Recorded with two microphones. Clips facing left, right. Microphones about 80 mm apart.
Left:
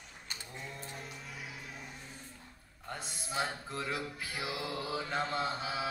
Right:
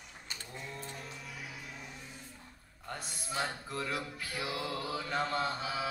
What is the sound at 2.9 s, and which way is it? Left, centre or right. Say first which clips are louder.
Male singing: even; left.